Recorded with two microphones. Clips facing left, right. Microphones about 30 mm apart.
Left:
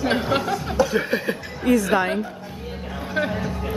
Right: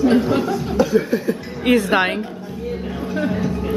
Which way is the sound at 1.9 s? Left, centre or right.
Right.